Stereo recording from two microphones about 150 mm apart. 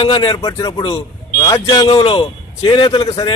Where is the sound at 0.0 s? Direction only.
35° left (ahead or behind).